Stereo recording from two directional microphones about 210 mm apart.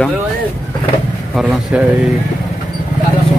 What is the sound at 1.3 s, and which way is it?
Speech, centre (ahead or behind).